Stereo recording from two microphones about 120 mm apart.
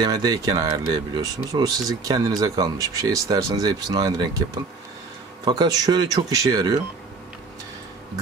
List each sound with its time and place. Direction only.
0.0 s speech: 35° right (ahead or behind)
5.4 s speech: 35° right (ahead or behind)